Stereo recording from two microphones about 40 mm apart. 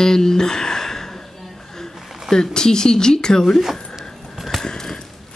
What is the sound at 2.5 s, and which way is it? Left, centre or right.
Speech, centre.